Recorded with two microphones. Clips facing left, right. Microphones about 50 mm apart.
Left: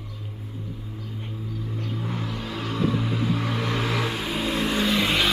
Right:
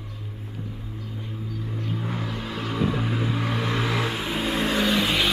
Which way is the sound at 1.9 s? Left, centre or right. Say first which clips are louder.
Right 1 dB; centre.